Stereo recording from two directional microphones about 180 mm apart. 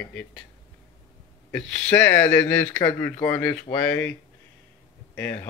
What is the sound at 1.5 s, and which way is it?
Speech, 10° left (ahead or behind).